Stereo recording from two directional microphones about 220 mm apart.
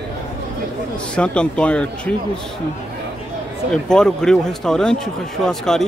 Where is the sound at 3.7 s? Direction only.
5° left (ahead or behind).